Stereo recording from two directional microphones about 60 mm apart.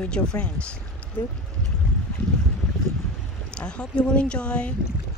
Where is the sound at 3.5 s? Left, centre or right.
Centre.